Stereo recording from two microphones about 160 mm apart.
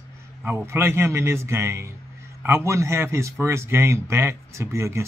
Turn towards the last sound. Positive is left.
turn(degrees=-20)  # may be behind; listen again after turning